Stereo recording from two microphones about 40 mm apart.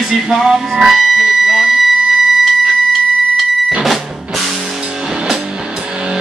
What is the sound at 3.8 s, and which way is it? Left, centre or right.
Music, centre.